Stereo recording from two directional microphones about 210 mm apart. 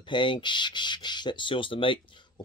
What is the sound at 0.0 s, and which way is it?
Speech, 20° left (ahead or behind).